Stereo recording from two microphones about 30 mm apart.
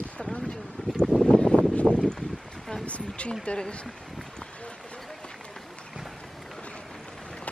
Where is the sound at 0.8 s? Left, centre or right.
Left.